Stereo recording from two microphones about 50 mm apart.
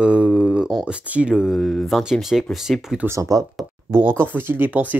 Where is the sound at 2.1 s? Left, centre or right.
Centre.